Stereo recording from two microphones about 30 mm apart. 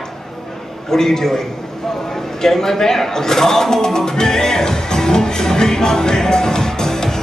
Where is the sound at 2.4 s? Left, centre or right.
Centre.